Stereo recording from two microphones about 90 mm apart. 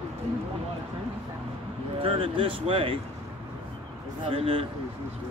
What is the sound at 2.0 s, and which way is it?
Speech, 85° right.